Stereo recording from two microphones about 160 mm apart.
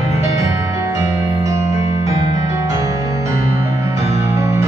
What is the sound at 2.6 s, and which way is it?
Music, 20° right (ahead or behind).